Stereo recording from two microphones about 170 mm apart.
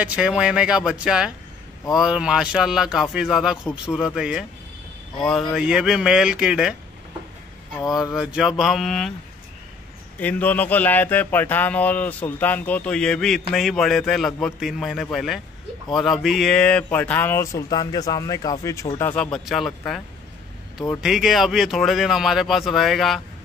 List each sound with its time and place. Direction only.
0.0 s speech: 5° right (ahead or behind)
7.8 s speech: 20° left (ahead or behind)
8.1 s speech: 5° right (ahead or behind)
10.1 s speech: 10° left (ahead or behind)
21.0 s speech: 5° right (ahead or behind)